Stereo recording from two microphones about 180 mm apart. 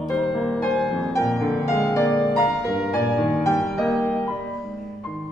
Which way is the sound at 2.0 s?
15° left (ahead or behind).